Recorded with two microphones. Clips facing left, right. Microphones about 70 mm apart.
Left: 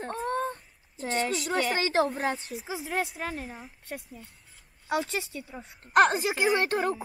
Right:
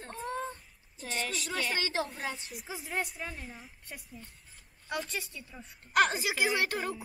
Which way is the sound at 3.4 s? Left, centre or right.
Centre.